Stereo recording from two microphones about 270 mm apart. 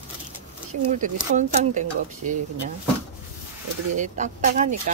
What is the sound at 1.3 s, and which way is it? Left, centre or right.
Speech, right.